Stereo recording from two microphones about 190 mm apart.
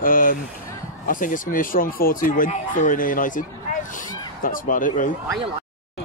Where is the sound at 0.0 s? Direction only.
45° left (ahead or behind).